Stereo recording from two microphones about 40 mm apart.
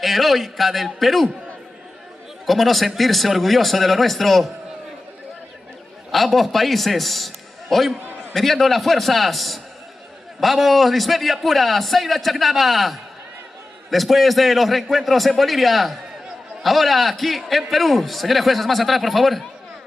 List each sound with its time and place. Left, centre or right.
0.0 s a man's voice: centre
2.4 s a man's voice: centre
6.1 s a man's voice: centre